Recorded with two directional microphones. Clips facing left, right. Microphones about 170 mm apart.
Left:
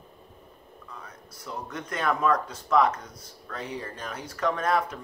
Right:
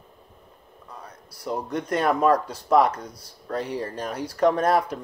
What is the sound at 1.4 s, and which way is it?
Speech, 35° right (ahead or behind).